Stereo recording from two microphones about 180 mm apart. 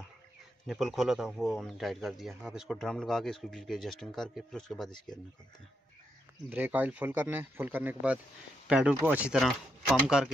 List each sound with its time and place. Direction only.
0.7 s speech: centre (ahead or behind)
4.9 s speech: 25° left (ahead or behind)
6.5 s speech: 10° right (ahead or behind)